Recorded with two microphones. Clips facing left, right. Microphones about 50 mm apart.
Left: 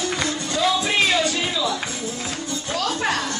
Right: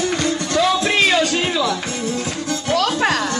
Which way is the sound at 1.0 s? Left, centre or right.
Right.